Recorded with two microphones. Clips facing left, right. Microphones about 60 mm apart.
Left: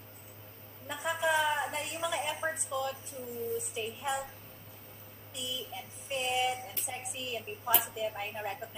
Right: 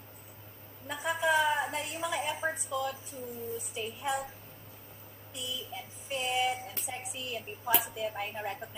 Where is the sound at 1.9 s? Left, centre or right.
Centre.